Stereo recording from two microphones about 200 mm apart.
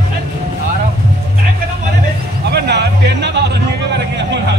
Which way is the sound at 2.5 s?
60° right (ahead or behind).